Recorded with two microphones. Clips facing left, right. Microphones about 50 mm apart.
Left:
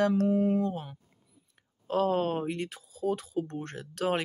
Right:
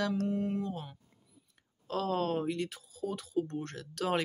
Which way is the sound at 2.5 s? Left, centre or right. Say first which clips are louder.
Left 1 dB; left.